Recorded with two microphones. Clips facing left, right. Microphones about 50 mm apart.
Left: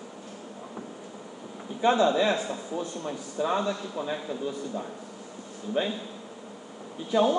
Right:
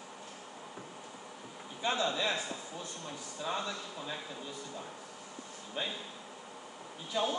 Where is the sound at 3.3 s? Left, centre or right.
Left.